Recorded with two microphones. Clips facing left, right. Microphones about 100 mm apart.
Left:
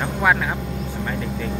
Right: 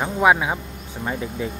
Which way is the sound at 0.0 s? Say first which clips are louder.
Right 2 dB; 15° right (ahead or behind).